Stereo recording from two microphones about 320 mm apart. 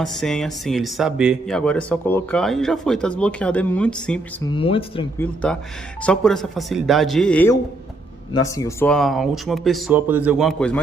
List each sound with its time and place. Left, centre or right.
0.0 s speech: centre
4.5 s speech: centre
5.2 s speech: centre